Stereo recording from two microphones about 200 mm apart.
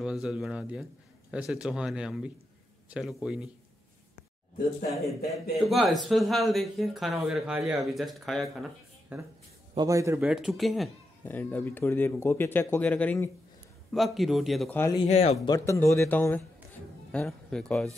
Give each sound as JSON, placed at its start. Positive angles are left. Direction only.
{"t": 0.0, "sound": "speech", "side_deg": -5}
{"t": 4.8, "sound": "speech", "side_deg": 0}
{"t": 7.5, "sound": "a man's voice", "side_deg": -15}
{"t": 7.8, "sound": "speech", "side_deg": 0}
{"t": 9.8, "sound": "a man's voice", "side_deg": -15}
{"t": 10.6, "sound": "speech", "side_deg": 0}
{"t": 14.8, "sound": "speech", "side_deg": 20}
{"t": 15.0, "sound": "speech", "side_deg": 35}
{"t": 15.4, "sound": "speech", "side_deg": 15}